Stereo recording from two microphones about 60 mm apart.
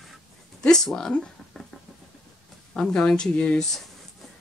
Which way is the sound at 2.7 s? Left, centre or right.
Centre.